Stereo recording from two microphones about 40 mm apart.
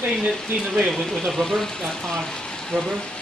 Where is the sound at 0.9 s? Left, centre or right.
Centre.